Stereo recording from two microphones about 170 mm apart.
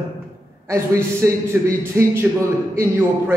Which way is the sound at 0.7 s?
20° right (ahead or behind).